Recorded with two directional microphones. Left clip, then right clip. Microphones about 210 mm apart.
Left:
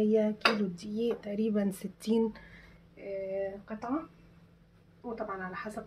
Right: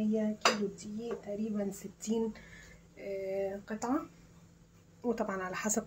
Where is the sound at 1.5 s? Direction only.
40° left (ahead or behind).